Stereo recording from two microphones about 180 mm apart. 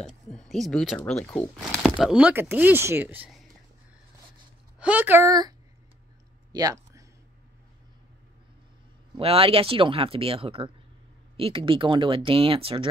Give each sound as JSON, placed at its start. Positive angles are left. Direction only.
{"t": 0.0, "sound": "speech", "side_deg": 5}
{"t": 2.0, "sound": "speech", "side_deg": -5}
{"t": 4.7, "sound": "speech", "side_deg": -10}
{"t": 6.5, "sound": "a sound", "side_deg": -20}
{"t": 9.1, "sound": "speech", "side_deg": -30}